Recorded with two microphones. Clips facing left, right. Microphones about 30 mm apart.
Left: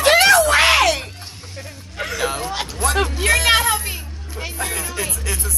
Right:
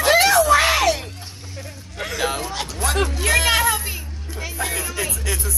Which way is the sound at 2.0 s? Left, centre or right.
Centre.